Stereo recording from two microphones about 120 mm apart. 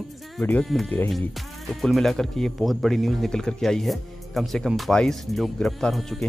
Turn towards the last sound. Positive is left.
turn(degrees=0)  # may be behind; listen again after turning